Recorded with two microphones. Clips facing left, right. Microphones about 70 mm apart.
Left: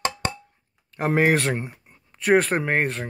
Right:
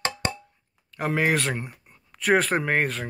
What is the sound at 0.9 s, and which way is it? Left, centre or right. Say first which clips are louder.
Speech: left 4 dB; left.